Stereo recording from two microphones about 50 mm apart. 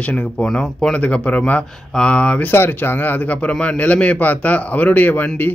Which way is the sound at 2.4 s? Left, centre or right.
Left.